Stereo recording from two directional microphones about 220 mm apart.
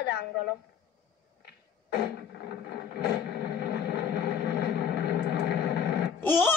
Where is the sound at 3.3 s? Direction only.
45° left (ahead or behind).